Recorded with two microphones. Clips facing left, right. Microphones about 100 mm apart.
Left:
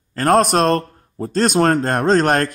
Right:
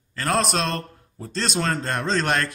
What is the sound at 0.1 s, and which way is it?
Speech, 50° left (ahead or behind).